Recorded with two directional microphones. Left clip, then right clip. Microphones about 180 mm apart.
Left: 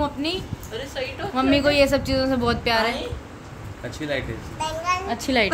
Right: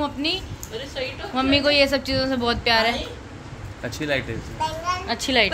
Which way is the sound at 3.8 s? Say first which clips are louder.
Right 3 dB; 55° right (ahead or behind).